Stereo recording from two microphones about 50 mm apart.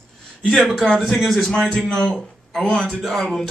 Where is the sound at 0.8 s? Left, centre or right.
Centre.